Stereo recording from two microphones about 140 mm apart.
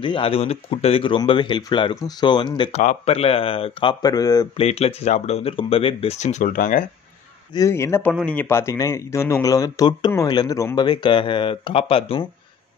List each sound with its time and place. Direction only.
0.0 s speech: 40° left (ahead or behind)
2.7 s speech: 65° left (ahead or behind)
3.1 s speech: 45° left (ahead or behind); by 4.5 s 25° left (ahead or behind)
4.6 s speech: 45° left (ahead or behind); by 6.9 s 80° left
7.5 s speech: 20° left (ahead or behind); by 12.3 s 40° left (ahead or behind)